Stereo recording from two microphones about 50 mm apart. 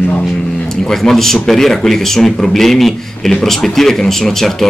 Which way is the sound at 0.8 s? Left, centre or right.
Centre.